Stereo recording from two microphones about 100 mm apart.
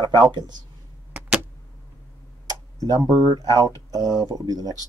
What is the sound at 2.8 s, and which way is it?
Speech, 40° right (ahead or behind).